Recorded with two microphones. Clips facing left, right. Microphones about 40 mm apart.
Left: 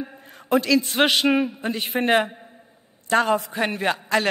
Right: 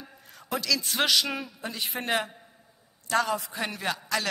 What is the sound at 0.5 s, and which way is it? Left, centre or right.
A man's voice, left.